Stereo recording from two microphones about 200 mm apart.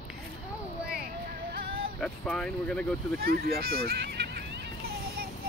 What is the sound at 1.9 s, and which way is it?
Speech, centre (ahead or behind).